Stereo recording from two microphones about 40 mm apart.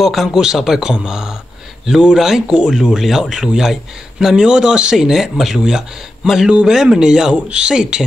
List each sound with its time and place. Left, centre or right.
0.0 s speech: centre
0.3 s speech: centre
2.4 s speech: right
2.7 s speech: centre
4.9 s speech: centre
7.3 s speech: right